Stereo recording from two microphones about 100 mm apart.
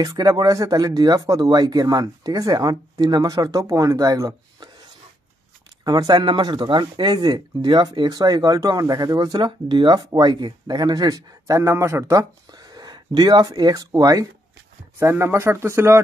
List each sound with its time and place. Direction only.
0.0 s speech: 35° right (ahead or behind)
5.9 s speech: 40° right (ahead or behind)
6.2 s speech: 50° right (ahead or behind)
15.0 s speech: 25° right (ahead or behind)